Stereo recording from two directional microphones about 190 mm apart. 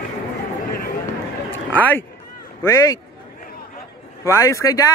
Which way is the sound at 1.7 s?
10° left (ahead or behind).